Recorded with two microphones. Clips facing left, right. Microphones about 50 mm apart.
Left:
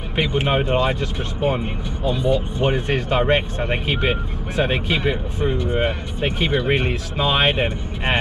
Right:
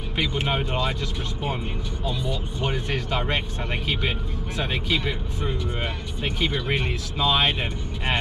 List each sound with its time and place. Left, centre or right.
0.1 s speech: left
2.0 s speech: left